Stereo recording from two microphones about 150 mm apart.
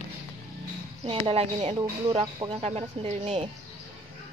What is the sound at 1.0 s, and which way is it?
Speech, 40° right (ahead or behind).